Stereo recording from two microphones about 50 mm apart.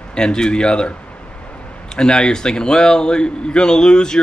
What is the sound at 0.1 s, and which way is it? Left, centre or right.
Speech, centre.